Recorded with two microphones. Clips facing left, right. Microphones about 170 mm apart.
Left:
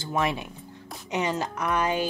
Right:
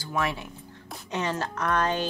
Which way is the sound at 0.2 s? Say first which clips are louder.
Left 2 dB; 15° left (ahead or behind).